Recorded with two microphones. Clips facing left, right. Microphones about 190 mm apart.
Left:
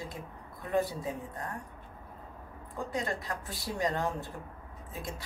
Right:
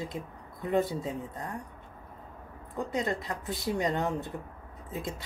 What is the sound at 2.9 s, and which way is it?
A woman's voice, 25° right (ahead or behind).